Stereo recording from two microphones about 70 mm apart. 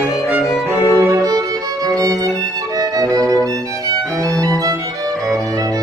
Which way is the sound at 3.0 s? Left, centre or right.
Right.